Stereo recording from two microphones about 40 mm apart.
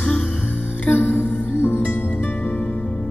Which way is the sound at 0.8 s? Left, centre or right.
Left.